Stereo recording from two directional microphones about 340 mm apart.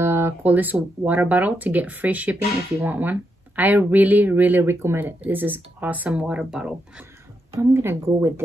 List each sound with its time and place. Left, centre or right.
0.0 s speech: centre